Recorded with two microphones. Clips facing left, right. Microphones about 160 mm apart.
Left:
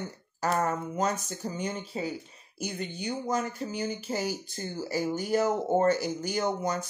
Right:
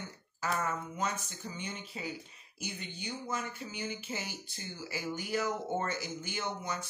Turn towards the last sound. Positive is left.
turn(degrees=40)  # may be behind; listen again after turning